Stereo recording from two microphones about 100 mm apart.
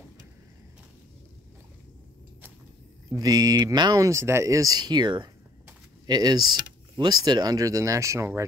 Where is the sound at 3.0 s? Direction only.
40° right (ahead or behind).